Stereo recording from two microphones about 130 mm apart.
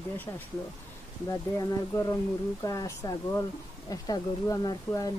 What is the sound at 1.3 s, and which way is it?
Speech, 25° left (ahead or behind).